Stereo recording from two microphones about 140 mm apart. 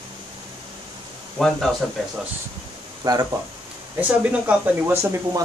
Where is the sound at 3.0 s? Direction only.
30° right (ahead or behind).